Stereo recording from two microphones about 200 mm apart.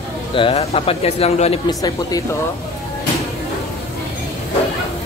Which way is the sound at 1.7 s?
20° left (ahead or behind).